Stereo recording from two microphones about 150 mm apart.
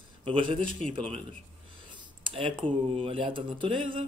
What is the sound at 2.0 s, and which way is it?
Speech, 35° right (ahead or behind).